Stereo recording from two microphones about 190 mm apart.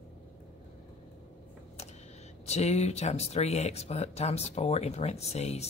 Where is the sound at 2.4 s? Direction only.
35° left (ahead or behind).